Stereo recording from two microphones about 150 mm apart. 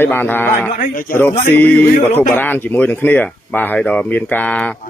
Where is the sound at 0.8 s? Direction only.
70° left (ahead or behind).